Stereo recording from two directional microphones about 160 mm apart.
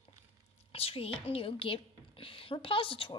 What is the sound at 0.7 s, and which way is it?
A woman's voice, 35° left (ahead or behind).